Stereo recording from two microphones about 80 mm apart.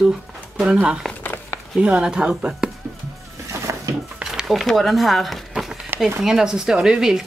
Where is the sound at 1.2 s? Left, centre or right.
Left.